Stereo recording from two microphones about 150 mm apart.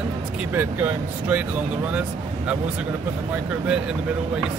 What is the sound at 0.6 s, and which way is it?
Speech, 15° right (ahead or behind).